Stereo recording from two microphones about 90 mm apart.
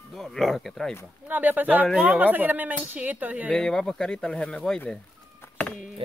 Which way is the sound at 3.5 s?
5° left (ahead or behind).